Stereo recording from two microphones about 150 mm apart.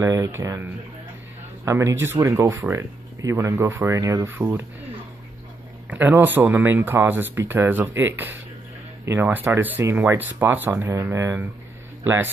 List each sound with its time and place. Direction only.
0.0 s speech: 20° right (ahead or behind)
5.9 s speech: 10° right (ahead or behind)